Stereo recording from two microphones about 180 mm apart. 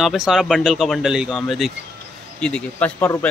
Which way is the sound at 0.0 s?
Centre (ahead or behind).